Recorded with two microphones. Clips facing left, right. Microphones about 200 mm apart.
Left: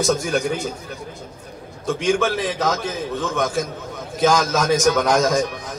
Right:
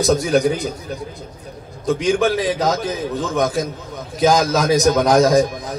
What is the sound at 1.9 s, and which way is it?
A man's voice, 35° right (ahead or behind).